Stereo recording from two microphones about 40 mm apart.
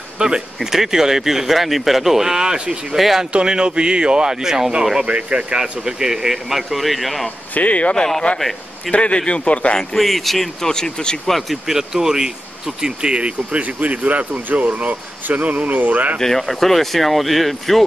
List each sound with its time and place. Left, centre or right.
0.2 s speech: right
0.6 s speech: centre
3.0 s speech: centre
3.3 s speech: right
5.0 s speech: right
5.6 s speech: centre
7.5 s speech: left
8.4 s a man's voice: centre
8.9 s speech: left
9.8 s speech: centre
10.7 s speech: centre
11.2 s speech: centre
11.6 s speech: centre; by 16.2 s right
16.2 s speech: centre